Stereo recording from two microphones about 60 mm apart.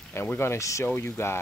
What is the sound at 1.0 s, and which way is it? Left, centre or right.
Speech, left.